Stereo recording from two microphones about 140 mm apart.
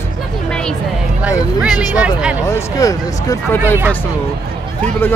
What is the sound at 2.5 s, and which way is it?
Speech, 25° left (ahead or behind).